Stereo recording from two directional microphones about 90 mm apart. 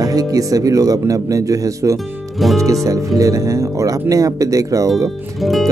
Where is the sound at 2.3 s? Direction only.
Centre (ahead or behind).